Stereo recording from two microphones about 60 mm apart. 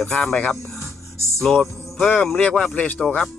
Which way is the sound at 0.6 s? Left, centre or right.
Left.